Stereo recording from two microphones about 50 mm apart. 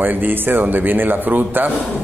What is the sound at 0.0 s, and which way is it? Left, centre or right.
A man's voice, right.